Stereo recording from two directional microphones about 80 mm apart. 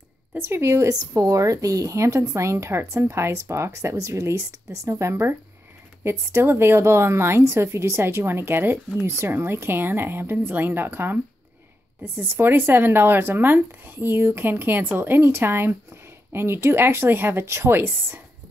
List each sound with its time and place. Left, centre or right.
0.3 s a woman's voice: right